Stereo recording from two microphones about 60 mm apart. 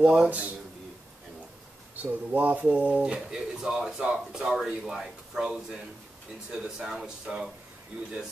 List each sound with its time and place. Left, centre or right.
0.0 s speech: centre
0.3 s a man's voice: right
2.0 s speech: right; by 7.5 s centre